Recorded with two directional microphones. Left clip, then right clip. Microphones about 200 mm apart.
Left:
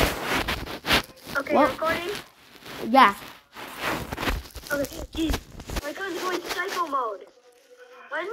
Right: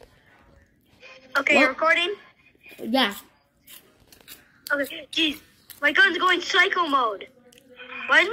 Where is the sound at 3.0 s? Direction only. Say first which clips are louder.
Left 7 dB; centre (ahead or behind).